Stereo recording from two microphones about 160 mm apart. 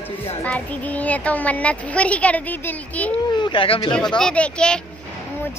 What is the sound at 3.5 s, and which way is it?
Speech, 30° left (ahead or behind).